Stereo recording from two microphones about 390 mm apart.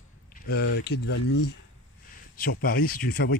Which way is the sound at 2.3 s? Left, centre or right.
Left.